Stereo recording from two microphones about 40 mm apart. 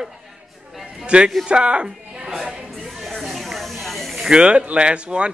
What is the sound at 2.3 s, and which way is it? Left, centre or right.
Speech, centre.